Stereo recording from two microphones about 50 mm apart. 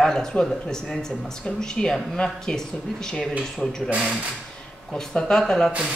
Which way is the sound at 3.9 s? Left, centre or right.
Centre.